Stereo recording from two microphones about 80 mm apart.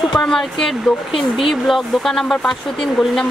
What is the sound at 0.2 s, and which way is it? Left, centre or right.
Speech, centre.